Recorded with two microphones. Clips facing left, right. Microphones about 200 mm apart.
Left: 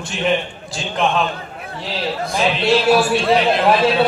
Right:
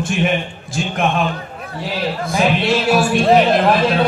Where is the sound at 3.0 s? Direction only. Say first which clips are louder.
Right 3 dB; 45° right (ahead or behind).